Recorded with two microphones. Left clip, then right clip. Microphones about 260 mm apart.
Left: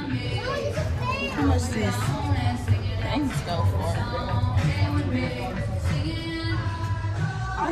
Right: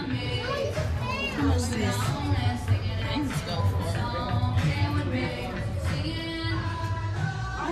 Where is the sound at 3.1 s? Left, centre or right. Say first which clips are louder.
Left 4 dB; centre.